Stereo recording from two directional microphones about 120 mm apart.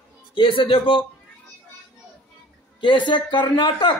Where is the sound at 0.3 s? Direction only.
45° left (ahead or behind).